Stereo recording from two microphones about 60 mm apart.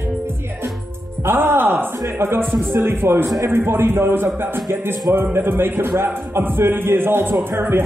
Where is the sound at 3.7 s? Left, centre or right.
Right.